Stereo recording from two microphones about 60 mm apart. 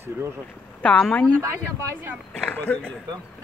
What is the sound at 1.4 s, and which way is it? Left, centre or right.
Speech, right.